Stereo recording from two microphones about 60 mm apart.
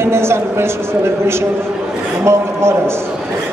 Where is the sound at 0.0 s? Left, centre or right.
Right.